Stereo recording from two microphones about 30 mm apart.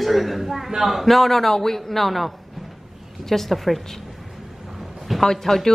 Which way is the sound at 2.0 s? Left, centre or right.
Centre.